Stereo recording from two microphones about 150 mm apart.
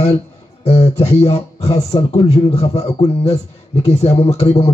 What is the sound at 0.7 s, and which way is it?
A man's voice, 45° left (ahead or behind).